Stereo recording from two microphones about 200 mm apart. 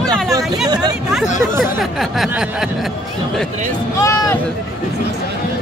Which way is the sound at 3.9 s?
15° left (ahead or behind).